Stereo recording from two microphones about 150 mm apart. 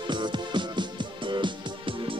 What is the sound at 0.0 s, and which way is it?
Music, 30° right (ahead or behind).